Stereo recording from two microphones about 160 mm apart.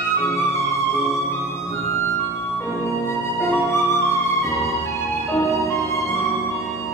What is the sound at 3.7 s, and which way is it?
Music, 20° left (ahead or behind).